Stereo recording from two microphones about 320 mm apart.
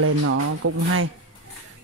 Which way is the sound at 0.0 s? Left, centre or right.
Right.